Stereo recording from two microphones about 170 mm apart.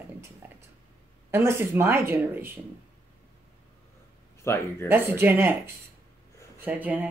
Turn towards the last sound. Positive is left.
turn(degrees=-10)  # may be behind; listen again after turning